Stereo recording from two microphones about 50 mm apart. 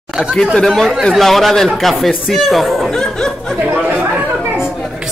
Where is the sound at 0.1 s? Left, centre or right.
Centre.